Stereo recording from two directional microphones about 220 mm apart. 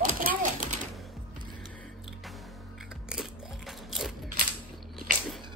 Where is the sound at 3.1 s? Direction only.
Centre (ahead or behind).